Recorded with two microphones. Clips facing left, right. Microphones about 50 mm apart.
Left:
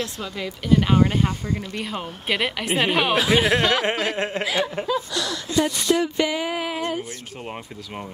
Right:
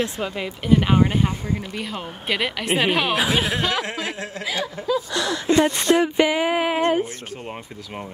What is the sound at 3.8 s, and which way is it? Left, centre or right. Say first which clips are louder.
Chuckle: left 4 dB; left.